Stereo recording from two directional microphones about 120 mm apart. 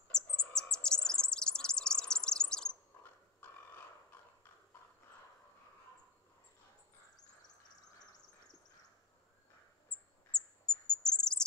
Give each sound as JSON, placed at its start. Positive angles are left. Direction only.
{"t": 0.1, "sound": "bird", "side_deg": 5}
{"t": 3.0, "sound": "horse", "side_deg": 20}
{"t": 10.3, "sound": "crow", "side_deg": -20}
{"t": 11.1, "sound": "bird", "side_deg": 5}